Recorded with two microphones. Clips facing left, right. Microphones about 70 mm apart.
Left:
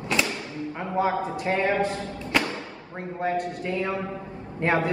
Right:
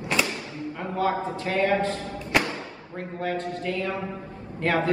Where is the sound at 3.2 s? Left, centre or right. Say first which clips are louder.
Left 2 dB; left.